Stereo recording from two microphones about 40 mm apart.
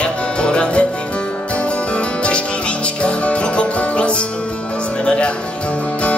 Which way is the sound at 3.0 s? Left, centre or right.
Left.